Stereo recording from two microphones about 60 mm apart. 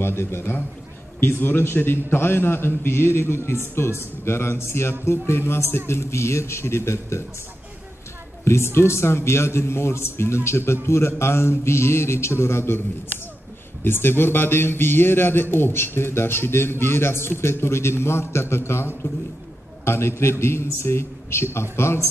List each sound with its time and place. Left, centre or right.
0.0 s a man's voice: left
8.5 s a man's voice: left
13.8 s a man's voice: left